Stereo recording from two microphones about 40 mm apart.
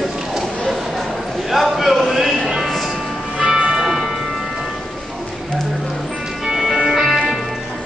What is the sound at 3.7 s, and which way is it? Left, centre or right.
Music, centre.